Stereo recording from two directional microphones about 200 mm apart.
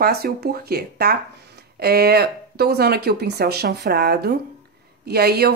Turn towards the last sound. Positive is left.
turn(degrees=-55)  # may be behind; listen again after turning